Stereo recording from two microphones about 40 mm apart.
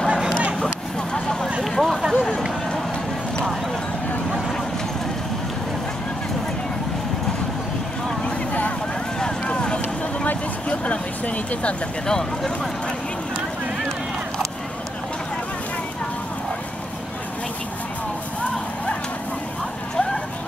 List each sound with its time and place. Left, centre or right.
1.6 s a sound: centre
9.5 s vehicle: left
12.1 s speech: centre